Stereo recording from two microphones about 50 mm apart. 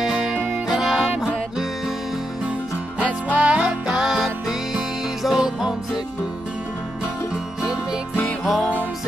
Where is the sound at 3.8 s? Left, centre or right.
Centre.